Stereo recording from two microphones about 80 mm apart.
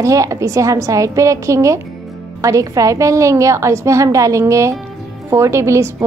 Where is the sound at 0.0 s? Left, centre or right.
Right.